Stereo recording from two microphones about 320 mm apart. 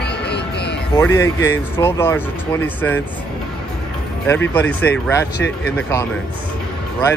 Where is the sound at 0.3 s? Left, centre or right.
Left.